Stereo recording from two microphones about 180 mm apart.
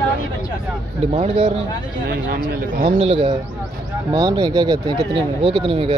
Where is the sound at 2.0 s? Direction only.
60° right (ahead or behind).